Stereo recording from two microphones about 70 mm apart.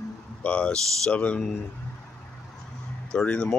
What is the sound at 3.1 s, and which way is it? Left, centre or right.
Speech, centre.